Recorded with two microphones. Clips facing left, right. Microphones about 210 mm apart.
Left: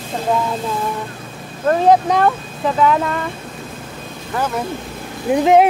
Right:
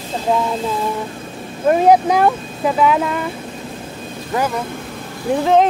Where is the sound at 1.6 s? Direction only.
10° right (ahead or behind).